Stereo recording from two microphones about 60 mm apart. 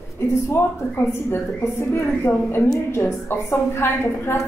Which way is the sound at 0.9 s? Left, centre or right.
Left.